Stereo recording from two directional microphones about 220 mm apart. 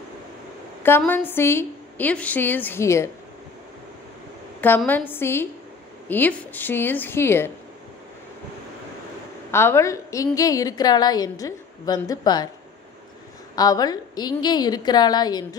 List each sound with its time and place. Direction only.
0.8 s a woman's voice: 10° left (ahead or behind)
4.6 s a woman's voice: 10° left (ahead or behind)
9.5 s a woman's voice: 10° left (ahead or behind)
13.6 s a woman's voice: 15° left (ahead or behind)